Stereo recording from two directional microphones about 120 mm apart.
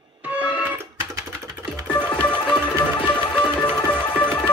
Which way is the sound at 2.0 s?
10° left (ahead or behind).